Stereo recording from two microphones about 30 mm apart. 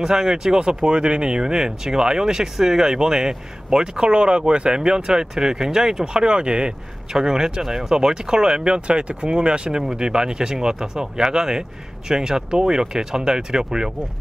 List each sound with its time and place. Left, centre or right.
0.0 s speech: right
7.1 s speech: right